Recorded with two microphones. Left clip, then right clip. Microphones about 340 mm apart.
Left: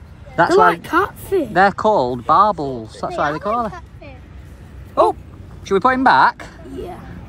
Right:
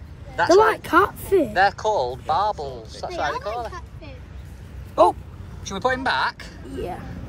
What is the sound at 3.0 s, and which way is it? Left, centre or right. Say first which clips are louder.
Speech: left 6 dB; left.